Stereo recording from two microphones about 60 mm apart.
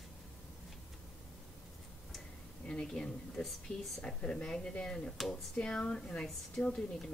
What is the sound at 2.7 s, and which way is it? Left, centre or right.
Speech, centre.